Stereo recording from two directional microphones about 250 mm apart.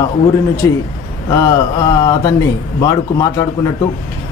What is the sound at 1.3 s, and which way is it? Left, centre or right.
Mantra, centre.